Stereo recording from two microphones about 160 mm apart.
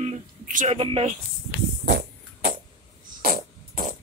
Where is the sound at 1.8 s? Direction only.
75° right (ahead or behind).